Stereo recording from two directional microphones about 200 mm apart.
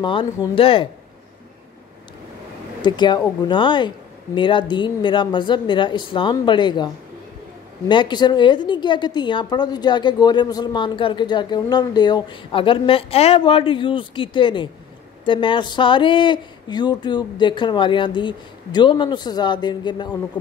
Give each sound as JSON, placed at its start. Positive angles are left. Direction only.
{"t": 0.0, "sound": "a woman's voice", "side_deg": 25}
{"t": 2.8, "sound": "a woman's voice", "side_deg": 20}
{"t": 7.9, "sound": "a woman's voice", "side_deg": 25}